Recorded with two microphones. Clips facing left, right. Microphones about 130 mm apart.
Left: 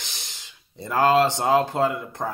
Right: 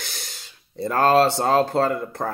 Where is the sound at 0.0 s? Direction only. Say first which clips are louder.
Right 4 dB; 55° right (ahead or behind).